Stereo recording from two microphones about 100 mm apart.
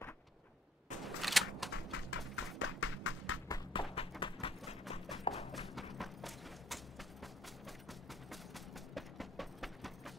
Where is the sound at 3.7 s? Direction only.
60° left (ahead or behind).